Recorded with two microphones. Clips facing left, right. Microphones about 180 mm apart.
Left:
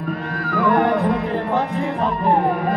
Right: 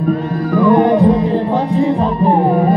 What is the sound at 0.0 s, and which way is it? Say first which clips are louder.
Music: right 9 dB; 25° right (ahead or behind).